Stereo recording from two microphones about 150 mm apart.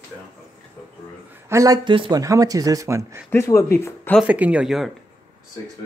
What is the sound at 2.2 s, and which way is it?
Speech, 20° right (ahead or behind).